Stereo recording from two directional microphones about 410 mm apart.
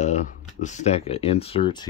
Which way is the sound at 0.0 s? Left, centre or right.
Centre.